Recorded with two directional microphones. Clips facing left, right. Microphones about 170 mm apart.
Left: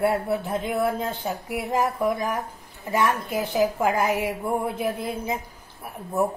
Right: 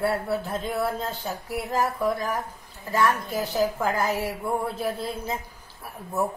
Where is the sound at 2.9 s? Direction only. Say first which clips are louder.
Even; 20° left (ahead or behind).